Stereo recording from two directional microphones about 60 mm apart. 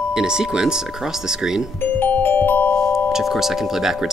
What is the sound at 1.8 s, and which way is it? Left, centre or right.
Music, left.